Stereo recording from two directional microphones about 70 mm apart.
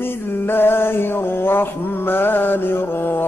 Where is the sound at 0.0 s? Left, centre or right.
Left.